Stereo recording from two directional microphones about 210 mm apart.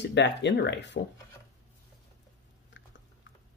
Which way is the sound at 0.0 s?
55° left (ahead or behind).